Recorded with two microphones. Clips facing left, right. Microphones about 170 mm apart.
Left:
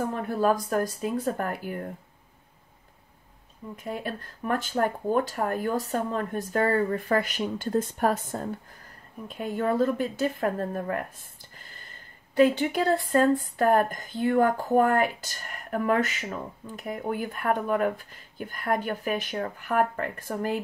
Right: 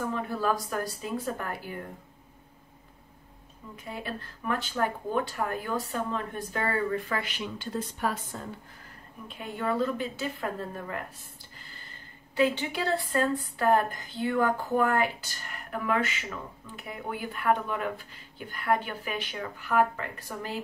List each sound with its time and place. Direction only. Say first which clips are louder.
0.0 s speech: left 4 dB; 50° left (ahead or behind)
4.0 s speech: left 3 dB; 45° left (ahead or behind)